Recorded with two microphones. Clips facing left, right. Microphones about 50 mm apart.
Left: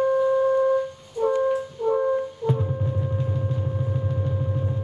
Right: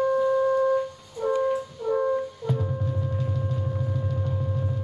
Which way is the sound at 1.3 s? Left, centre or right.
Left.